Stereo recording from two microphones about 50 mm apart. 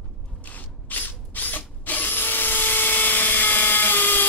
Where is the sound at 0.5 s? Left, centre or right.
Left.